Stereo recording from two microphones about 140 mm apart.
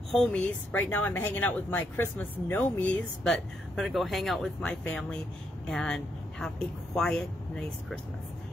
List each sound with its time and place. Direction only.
0.1 s a woman's voice: 10° left (ahead or behind)
3.7 s speech: centre (ahead or behind)